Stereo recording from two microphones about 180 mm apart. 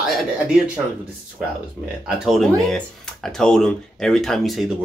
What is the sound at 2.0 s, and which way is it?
Speech, centre (ahead or behind).